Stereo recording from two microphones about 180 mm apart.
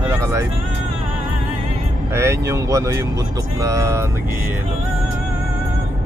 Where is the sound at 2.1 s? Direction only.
15° right (ahead or behind).